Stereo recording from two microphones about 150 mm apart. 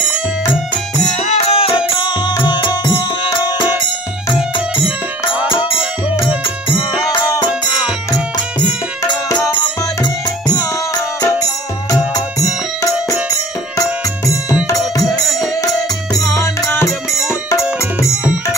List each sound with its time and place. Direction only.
1.2 s music: 45° left (ahead or behind); by 3.4 s 30° left (ahead or behind)
4.4 s music: 10° right (ahead or behind)
7.1 s music: 25° left (ahead or behind)
10.0 s music: 30° left (ahead or behind)
15.0 s music: centre (ahead or behind)
15.6 s music: 20° left (ahead or behind)